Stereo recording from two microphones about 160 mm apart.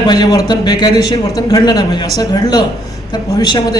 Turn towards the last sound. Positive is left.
turn(degrees=25)  # may be behind; listen again after turning